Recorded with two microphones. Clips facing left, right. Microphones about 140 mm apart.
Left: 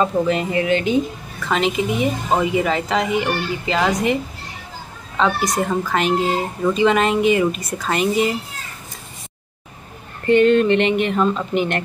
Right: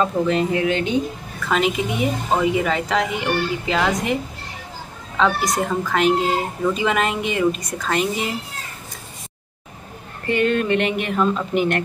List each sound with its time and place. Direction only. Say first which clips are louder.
0.0 s speech: left 1 dB; 5° left (ahead or behind)
10.2 s speech: left 6 dB; centre (ahead or behind)